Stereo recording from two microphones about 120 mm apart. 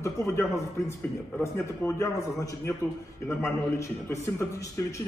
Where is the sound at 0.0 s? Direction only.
25° left (ahead or behind).